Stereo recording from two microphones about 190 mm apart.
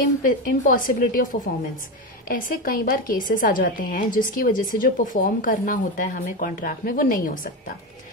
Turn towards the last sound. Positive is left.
turn(degrees=45)  # may be behind; listen again after turning